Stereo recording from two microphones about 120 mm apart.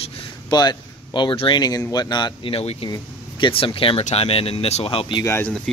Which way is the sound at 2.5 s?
50° left (ahead or behind).